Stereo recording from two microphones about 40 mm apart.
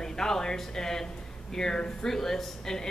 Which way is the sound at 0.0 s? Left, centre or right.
Centre.